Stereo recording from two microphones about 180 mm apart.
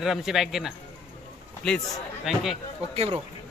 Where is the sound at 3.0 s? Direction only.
35° right (ahead or behind).